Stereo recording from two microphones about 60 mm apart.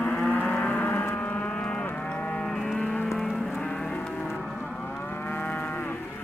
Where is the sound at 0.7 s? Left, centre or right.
Left.